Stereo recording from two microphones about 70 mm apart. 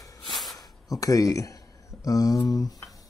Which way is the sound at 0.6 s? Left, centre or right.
Left.